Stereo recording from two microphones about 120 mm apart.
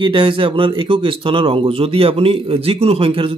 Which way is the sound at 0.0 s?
45° right (ahead or behind).